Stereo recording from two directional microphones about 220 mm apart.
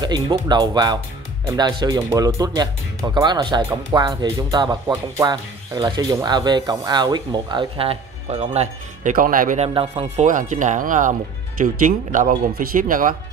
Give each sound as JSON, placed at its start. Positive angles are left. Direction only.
{"t": 0.0, "sound": "speech", "side_deg": -20}